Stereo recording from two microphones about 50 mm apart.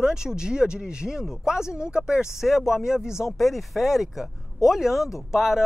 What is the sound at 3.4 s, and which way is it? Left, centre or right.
Speech, centre.